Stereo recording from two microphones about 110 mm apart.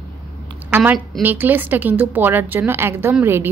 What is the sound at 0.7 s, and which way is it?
A woman's voice, 15° right (ahead or behind).